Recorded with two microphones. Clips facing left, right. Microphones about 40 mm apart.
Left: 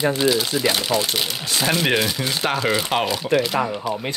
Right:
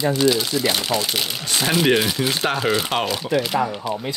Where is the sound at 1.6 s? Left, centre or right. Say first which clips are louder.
Right 2 dB; centre.